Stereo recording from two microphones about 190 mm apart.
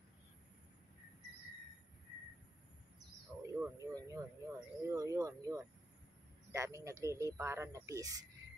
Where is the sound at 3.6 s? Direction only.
15° right (ahead or behind).